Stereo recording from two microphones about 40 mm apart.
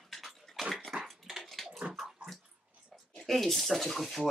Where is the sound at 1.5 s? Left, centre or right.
Centre.